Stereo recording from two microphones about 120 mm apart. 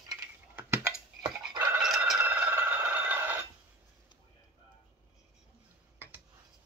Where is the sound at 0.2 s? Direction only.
20° right (ahead or behind).